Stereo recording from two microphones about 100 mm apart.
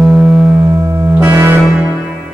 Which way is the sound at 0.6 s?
30° right (ahead or behind).